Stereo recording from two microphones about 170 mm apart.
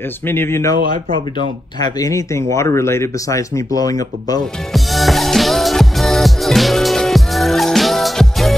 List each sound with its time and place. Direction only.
0.3 s speech: 15° left (ahead or behind)
0.7 s speech: 55° right (ahead or behind)
1.8 s speech: 20° left (ahead or behind)
4.7 s music: centre (ahead or behind)